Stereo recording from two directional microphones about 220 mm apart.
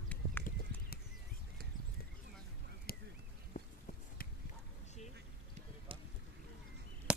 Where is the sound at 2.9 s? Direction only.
40° left (ahead or behind).